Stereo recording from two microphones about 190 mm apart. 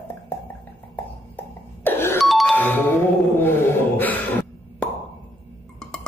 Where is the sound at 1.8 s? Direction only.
10° left (ahead or behind).